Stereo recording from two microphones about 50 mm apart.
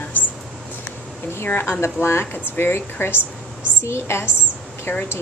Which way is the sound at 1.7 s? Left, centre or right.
Left.